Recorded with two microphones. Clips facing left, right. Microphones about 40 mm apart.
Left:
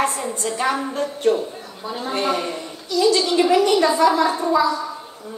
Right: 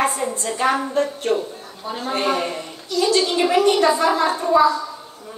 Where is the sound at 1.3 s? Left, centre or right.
Right.